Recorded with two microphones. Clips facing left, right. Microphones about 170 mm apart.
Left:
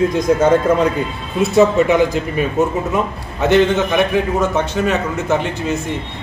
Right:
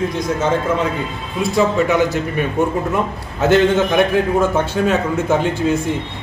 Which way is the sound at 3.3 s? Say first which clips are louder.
Even; 5° right (ahead or behind).